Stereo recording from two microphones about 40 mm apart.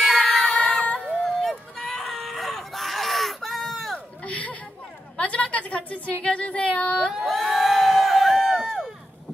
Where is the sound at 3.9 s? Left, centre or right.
Left.